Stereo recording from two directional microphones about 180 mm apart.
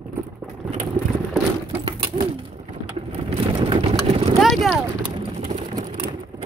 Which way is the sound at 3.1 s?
30° right (ahead or behind).